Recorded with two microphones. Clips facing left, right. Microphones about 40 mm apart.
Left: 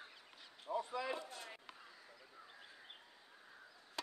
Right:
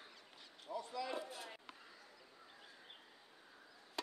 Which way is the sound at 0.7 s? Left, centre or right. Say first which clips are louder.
Left 5 dB; left.